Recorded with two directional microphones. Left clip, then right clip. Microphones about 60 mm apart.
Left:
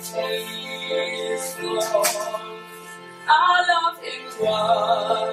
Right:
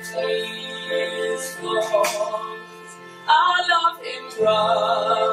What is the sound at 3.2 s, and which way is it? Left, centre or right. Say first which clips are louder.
Music: even; centre.